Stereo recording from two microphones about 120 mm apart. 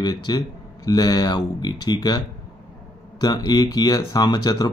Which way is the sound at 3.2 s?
30° left (ahead or behind).